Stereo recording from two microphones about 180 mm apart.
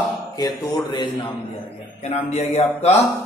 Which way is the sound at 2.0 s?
35° left (ahead or behind).